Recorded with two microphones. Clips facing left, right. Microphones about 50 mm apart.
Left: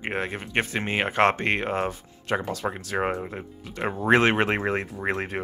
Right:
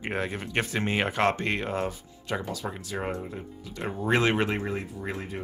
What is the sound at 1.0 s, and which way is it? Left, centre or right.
Speech, left.